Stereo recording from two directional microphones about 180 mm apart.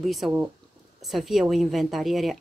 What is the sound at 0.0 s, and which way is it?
Speech, centre (ahead or behind).